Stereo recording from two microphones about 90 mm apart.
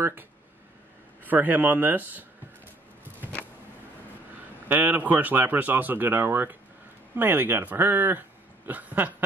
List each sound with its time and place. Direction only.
1.2 s speech: 20° right (ahead or behind)
4.6 s speech: 20° right (ahead or behind)